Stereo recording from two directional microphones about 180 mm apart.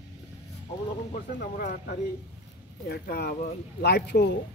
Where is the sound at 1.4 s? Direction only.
50° left (ahead or behind); by 4.4 s 70° left (ahead or behind).